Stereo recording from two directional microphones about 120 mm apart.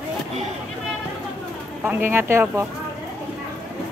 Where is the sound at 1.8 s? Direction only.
15° right (ahead or behind).